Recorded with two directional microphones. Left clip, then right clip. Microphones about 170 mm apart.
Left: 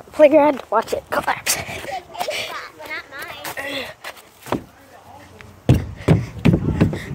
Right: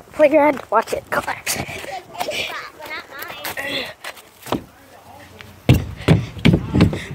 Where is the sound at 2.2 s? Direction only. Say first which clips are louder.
Right 2 dB; 50° left (ahead or behind).